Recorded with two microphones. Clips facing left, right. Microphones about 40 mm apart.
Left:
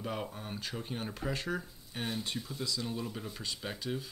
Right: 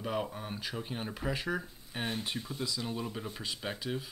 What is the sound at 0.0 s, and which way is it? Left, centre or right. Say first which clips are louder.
Speech: right 3 dB; centre.